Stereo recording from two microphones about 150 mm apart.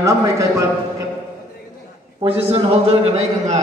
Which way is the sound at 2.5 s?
40° right (ahead or behind).